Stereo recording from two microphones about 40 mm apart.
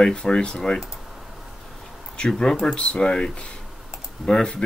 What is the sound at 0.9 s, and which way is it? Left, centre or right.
Tick, centre.